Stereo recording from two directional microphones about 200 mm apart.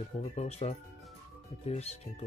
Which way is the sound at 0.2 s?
35° left (ahead or behind).